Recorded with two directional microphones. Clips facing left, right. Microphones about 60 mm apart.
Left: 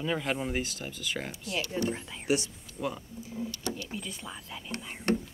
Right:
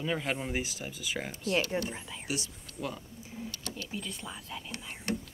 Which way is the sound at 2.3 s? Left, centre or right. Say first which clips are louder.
Left 8 dB; left.